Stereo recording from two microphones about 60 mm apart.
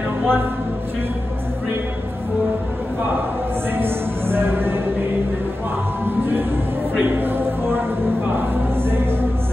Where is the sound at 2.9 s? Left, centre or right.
Right.